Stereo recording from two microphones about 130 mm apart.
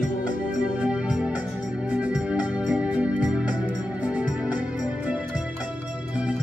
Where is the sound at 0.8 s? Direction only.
10° right (ahead or behind).